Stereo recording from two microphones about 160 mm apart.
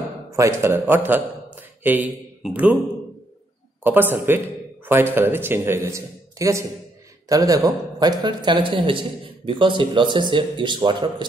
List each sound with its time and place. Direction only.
0.4 s a man's voice: 15° right (ahead or behind)
3.8 s speech: 10° right (ahead or behind); by 11.2 s 30° right (ahead or behind)